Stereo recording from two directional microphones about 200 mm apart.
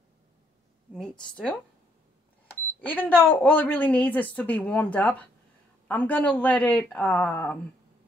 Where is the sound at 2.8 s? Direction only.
10° left (ahead or behind).